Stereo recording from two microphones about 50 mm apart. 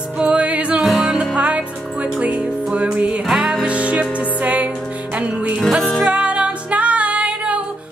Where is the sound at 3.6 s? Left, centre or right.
Right.